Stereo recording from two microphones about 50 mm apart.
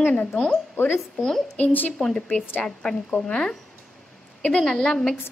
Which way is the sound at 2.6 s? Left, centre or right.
Centre.